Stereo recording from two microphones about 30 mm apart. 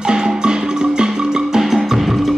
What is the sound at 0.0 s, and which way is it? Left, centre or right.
Music, right.